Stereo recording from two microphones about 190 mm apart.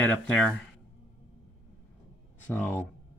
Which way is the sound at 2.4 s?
10° left (ahead or behind).